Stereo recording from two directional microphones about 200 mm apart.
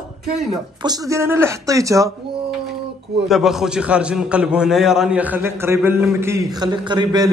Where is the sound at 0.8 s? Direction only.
15° right (ahead or behind).